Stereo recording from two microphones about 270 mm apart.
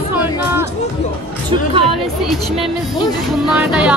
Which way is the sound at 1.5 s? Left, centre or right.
Centre.